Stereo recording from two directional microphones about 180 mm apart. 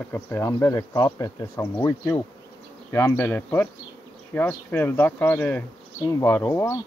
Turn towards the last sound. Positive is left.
turn(degrees=15)  # may be behind; listen again after turning